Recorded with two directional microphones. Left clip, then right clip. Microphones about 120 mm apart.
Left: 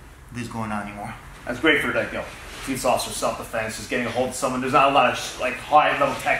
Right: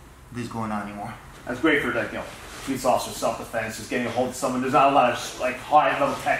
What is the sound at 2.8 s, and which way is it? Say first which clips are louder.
Speech: even; 10° left (ahead or behind).